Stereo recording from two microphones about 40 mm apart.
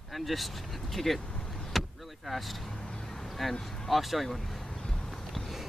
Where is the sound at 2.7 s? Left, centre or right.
Left; by 3.5 s centre.